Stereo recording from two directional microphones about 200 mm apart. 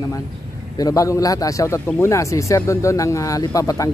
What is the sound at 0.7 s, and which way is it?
Speech, 15° left (ahead or behind).